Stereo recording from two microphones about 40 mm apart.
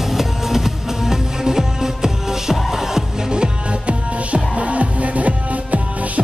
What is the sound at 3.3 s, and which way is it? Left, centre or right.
Music, right.